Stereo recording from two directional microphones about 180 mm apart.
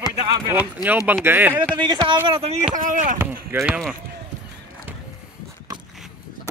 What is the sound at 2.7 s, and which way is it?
Speech, 50° right (ahead or behind).